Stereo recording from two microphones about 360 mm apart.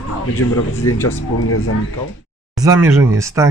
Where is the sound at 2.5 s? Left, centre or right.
Centre.